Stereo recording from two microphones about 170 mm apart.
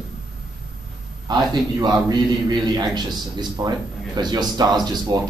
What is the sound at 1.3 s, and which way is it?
A man's voice, 25° right (ahead or behind).